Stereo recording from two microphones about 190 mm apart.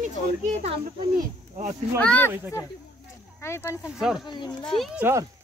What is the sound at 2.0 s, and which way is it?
Speech, 5° left (ahead or behind).